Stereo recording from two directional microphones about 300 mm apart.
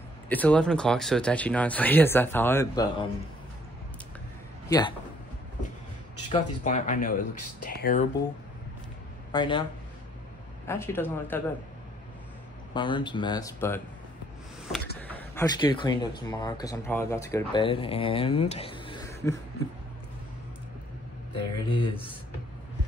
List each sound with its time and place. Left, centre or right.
0.3 s speech: centre
4.6 s a man's voice: centre
6.2 s speech: centre
9.3 s speech: centre
10.7 s speech: centre
12.7 s speech: centre
15.0 s speech: centre
21.3 s speech: centre